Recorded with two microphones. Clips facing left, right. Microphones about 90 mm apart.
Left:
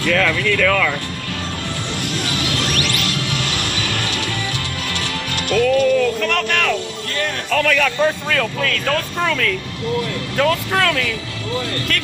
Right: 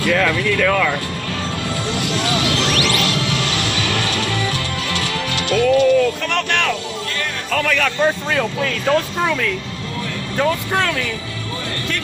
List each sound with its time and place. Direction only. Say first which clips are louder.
0.0 s speech: right 1 dB; 10° right (ahead or behind)
2.1 s music: right 4 dB; 40° right (ahead or behind)
3.5 s music: right 2 dB; 45° left (ahead or behind)
3.8 s music: right 3 dB; 40° right (ahead or behind)
5.5 s speech: right 1 dB; centre (ahead or behind)
8.3 s speech: even; 15° right (ahead or behind)